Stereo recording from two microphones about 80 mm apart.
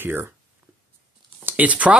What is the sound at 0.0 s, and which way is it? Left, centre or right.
Speech, right.